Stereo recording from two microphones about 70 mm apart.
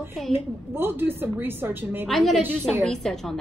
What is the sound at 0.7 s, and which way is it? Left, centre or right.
Speech, right.